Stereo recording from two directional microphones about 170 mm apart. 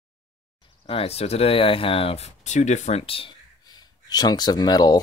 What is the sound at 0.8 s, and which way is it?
Speech, 35° left (ahead or behind).